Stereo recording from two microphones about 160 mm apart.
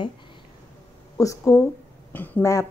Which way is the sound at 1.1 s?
20° left (ahead or behind).